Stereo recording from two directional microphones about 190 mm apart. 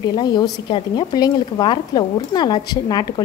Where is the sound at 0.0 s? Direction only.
20° left (ahead or behind).